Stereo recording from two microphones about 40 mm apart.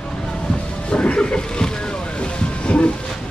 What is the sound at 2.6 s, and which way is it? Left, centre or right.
Train, left.